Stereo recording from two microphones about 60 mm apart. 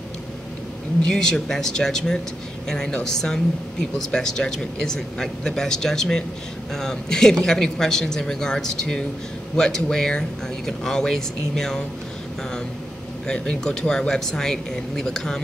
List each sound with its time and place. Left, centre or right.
1.0 s a man's voice: centre
13.3 s a man's voice: centre